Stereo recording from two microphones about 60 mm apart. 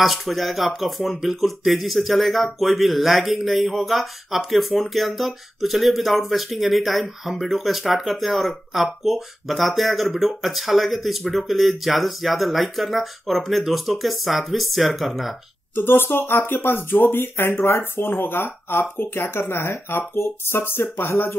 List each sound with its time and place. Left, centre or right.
0.0 s speech: centre
15.7 s speech: left